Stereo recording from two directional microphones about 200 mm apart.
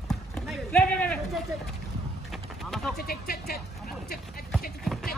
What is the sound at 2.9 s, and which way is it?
Speech, 50° left (ahead or behind).